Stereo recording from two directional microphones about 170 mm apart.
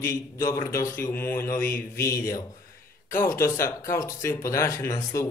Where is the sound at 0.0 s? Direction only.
20° left (ahead or behind).